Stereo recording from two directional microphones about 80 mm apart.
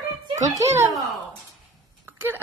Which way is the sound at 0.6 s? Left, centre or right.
Right.